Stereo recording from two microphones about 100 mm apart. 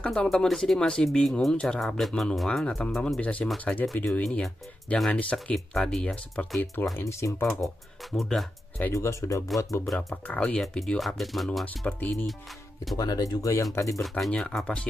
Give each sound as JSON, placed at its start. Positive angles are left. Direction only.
{"t": 0.0, "sound": "speech", "side_deg": 10}
{"t": 6.6, "sound": "speech", "side_deg": 20}
{"t": 7.0, "sound": "speech", "side_deg": 30}
{"t": 7.4, "sound": "speech", "side_deg": 5}
{"t": 8.9, "sound": "speech", "side_deg": 30}
{"t": 10.2, "sound": "speech", "side_deg": 10}
{"t": 11.8, "sound": "speech", "side_deg": 15}
{"t": 12.9, "sound": "speech", "side_deg": 40}
{"t": 14.0, "sound": "speech", "side_deg": 5}